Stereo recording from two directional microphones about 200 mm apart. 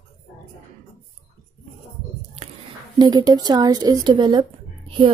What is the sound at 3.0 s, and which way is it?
Speech, 20° right (ahead or behind).